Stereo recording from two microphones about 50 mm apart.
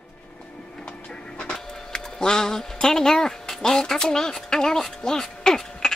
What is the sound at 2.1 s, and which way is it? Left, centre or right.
Speech, centre.